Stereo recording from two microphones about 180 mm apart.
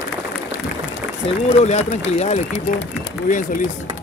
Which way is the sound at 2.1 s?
35° left (ahead or behind).